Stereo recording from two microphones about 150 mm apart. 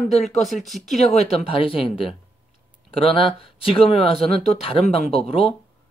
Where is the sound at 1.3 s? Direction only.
40° left (ahead or behind).